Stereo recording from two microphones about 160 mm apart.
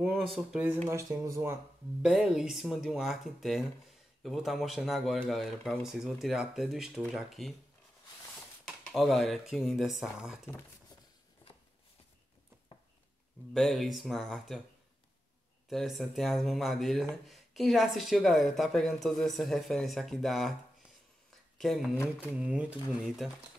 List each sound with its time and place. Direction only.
0.3 s a woman's voice: centre (ahead or behind)
0.8 s speech: 20° right (ahead or behind)
2.0 s a woman's voice: 5° right (ahead or behind)
8.6 s a woman's voice: centre (ahead or behind)
13.5 s a woman's voice: centre (ahead or behind)
15.7 s a woman's voice: centre (ahead or behind)
21.5 s a woman's voice: centre (ahead or behind)
21.9 s speech: 15° left (ahead or behind)
22.4 s a woman's voice: 10° right (ahead or behind)